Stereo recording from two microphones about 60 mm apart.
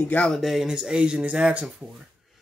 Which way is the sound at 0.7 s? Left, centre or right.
Centre.